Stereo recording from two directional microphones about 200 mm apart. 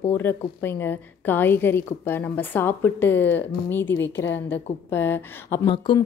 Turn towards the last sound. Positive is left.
turn(degrees=20)  # may be behind; listen again after turning